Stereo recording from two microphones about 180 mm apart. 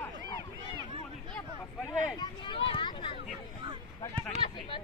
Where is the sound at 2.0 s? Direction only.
25° left (ahead or behind).